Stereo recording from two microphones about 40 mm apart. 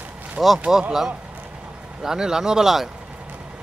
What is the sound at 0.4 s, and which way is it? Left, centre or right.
Speech, right.